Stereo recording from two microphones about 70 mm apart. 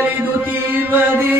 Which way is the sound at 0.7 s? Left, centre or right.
Right.